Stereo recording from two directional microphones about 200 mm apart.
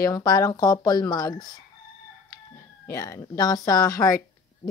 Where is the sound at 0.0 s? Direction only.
20° left (ahead or behind).